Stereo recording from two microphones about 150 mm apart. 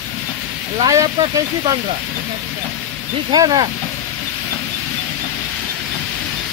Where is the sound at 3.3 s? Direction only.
30° right (ahead or behind).